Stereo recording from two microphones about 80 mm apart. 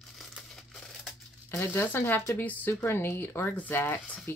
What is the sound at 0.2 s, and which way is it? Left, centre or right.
Crushing, centre.